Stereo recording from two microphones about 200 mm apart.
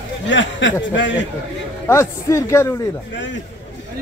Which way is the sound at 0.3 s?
65° left (ahead or behind).